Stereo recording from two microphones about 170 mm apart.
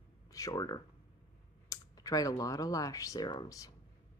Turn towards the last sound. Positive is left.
turn(degrees=25)  # may be behind; listen again after turning